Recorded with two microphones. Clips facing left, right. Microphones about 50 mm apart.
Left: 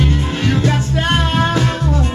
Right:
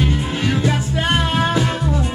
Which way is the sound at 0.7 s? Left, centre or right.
Centre.